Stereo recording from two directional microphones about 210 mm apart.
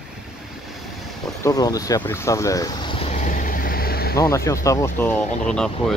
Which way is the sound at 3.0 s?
35° left (ahead or behind).